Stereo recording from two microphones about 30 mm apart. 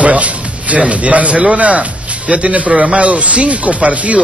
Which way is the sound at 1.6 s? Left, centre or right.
Right.